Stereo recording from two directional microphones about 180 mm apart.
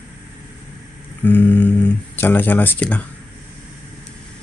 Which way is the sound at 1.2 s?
10° left (ahead or behind).